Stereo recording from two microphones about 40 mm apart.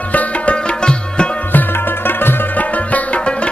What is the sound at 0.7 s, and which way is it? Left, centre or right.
Sitar, left.